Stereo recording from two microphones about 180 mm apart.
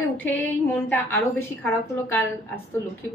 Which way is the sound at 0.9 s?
10° left (ahead or behind).